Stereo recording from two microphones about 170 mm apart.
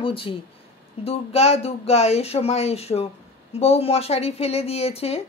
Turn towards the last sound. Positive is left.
turn(degrees=35)  # may be behind; listen again after turning